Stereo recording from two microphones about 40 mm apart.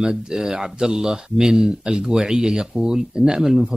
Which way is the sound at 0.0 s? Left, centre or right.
Centre.